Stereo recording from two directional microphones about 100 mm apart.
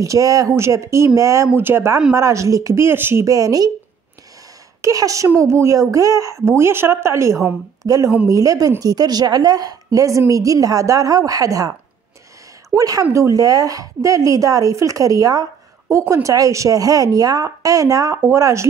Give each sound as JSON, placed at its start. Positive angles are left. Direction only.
{"t": 0.0, "sound": "a woman's voice", "side_deg": -35}
{"t": 3.3, "sound": "a woman's voice", "side_deg": -35}
{"t": 4.8, "sound": "a woman's voice", "side_deg": -35}
{"t": 12.7, "sound": "a woman's voice", "side_deg": -35}